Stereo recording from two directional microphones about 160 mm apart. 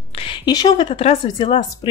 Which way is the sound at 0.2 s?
30° left (ahead or behind).